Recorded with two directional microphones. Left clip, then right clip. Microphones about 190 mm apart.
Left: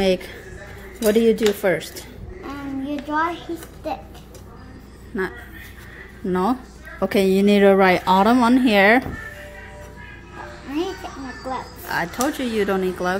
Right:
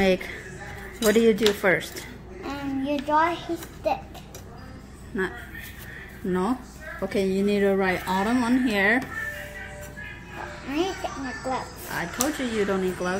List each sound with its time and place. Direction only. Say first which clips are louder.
0.0 s speech: left 2 dB; 20° left (ahead or behind)
2.4 s a child's voice: even; centre (ahead or behind)
5.1 s speech: left 3 dB; 20° left (ahead or behind)
7.0 s a woman's voice: left 7 dB; 40° left (ahead or behind)
10.7 s a child's voice: left 1 dB; centre (ahead or behind)
11.8 s a woman's voice: left 5 dB; 30° left (ahead or behind)